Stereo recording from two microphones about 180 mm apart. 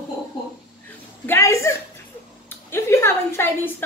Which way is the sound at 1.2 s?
15° left (ahead or behind).